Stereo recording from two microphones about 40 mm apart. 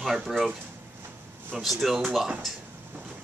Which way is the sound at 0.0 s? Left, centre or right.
Centre.